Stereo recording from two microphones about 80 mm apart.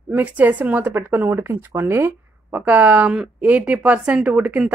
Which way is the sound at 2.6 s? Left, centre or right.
Centre.